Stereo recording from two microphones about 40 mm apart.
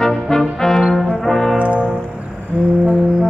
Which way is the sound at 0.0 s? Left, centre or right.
Centre.